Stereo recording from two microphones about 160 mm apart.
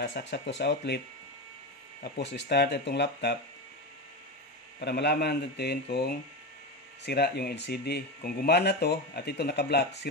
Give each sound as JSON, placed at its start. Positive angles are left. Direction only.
{"t": 0.2, "sound": "speech", "side_deg": 90}
{"t": 2.1, "sound": "speech", "side_deg": 90}
{"t": 4.7, "sound": "speech", "side_deg": 90}